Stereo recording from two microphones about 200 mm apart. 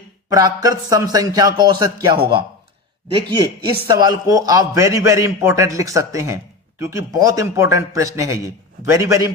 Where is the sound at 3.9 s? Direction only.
20° right (ahead or behind).